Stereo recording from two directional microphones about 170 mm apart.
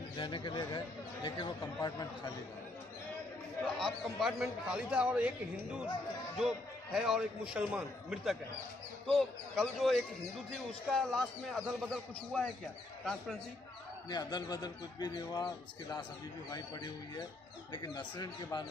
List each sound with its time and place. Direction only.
0.1 s speech: 30° left (ahead or behind)
3.6 s a man's voice: centre (ahead or behind)
14.0 s speech: 25° left (ahead or behind)